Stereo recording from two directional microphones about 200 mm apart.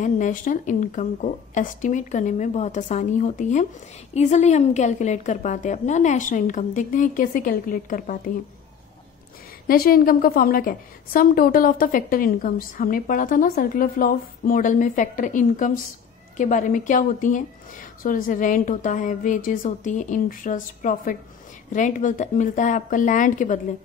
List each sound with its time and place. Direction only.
0.0 s a woman's voice: 40° left (ahead or behind)
9.7 s a woman's voice: 45° left (ahead or behind)